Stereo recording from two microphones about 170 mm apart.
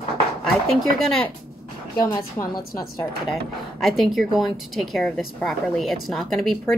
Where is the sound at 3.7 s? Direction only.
Centre (ahead or behind).